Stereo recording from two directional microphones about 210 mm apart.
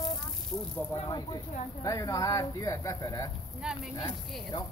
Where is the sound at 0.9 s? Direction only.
20° left (ahead or behind).